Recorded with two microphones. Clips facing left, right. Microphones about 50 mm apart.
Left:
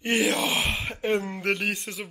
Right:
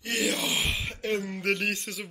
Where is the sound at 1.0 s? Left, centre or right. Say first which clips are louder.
Left 3 dB; left.